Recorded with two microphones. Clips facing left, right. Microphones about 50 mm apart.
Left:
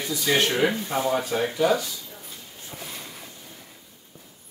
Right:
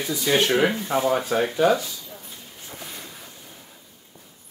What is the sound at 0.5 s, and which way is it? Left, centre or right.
Speech, right.